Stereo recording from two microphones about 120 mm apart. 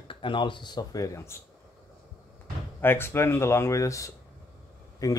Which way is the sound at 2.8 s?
20° left (ahead or behind).